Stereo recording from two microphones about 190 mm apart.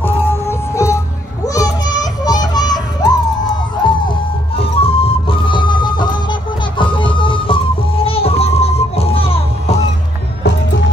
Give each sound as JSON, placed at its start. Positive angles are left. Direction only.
{"t": 0.0, "sound": "music", "side_deg": 15}